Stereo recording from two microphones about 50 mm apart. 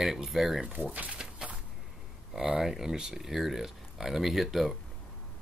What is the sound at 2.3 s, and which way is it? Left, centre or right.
Speech, centre.